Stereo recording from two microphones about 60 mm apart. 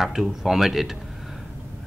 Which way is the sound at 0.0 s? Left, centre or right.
Centre.